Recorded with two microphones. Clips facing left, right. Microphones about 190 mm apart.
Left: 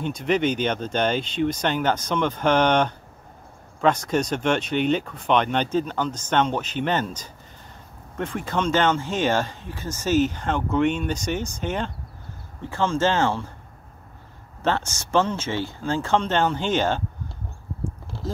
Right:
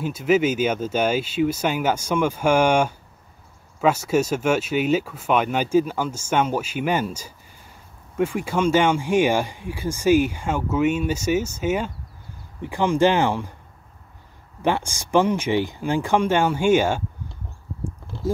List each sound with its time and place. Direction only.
0.0 s speech: 5° right (ahead or behind)
14.6 s speech: 10° right (ahead or behind)